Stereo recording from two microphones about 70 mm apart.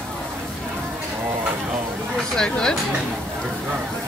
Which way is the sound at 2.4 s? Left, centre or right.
Centre.